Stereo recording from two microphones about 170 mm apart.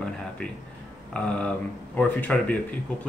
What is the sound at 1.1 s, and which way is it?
Speech, 5° left (ahead or behind).